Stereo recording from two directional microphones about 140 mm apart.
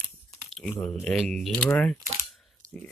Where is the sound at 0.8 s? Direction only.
5° left (ahead or behind).